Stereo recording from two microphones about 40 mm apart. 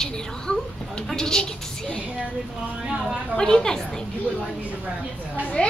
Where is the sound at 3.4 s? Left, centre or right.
Centre.